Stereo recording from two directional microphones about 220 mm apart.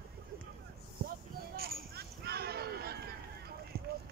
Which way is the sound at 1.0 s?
45° right (ahead or behind).